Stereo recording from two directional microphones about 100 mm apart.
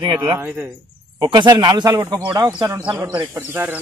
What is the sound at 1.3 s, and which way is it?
Speech, 50° right (ahead or behind).